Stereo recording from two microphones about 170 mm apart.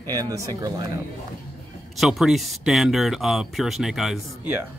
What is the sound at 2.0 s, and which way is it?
Speech, centre (ahead or behind).